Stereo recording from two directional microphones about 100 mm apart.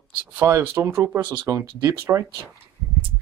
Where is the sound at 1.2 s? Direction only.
55° right (ahead or behind).